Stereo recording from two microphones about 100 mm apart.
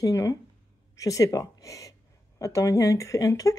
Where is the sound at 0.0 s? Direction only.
35° left (ahead or behind).